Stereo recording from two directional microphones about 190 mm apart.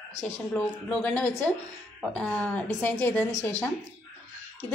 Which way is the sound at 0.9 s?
5° left (ahead or behind).